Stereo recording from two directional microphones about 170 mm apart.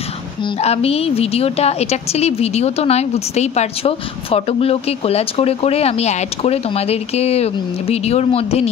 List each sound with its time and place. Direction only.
0.6 s a woman's voice: 35° left (ahead or behind)